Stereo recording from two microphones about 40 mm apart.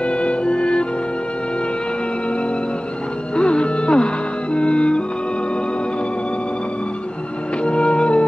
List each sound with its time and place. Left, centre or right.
0.0 s music: left
3.3 s music: left
7.6 s music: left